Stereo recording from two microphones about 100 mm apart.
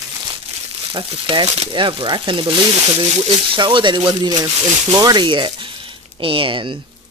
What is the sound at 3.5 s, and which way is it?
Speech, 55° right (ahead or behind).